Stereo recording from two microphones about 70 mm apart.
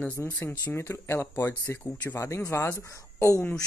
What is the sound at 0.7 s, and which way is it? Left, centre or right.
Speech, left.